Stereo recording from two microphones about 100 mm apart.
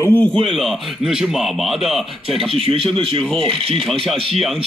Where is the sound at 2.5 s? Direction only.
70° right (ahead or behind).